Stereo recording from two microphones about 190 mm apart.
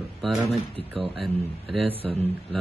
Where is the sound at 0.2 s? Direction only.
Centre (ahead or behind).